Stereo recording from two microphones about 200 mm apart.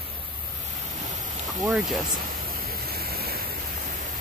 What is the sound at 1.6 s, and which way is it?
Speech, centre (ahead or behind).